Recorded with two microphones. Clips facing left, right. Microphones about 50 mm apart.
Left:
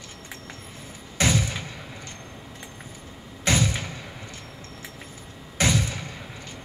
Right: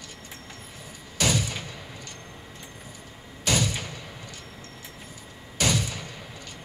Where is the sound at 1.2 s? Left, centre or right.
Left.